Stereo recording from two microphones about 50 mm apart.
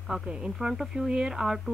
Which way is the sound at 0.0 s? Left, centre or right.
Centre.